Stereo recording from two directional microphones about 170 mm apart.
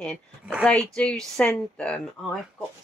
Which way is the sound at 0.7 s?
5° left (ahead or behind).